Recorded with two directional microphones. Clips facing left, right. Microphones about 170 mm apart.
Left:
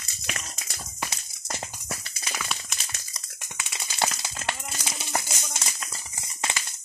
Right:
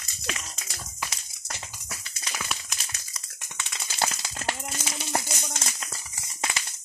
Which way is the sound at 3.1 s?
10° left (ahead or behind).